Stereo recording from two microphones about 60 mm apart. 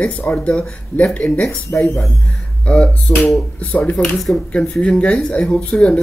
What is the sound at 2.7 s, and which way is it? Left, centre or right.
Speech, centre.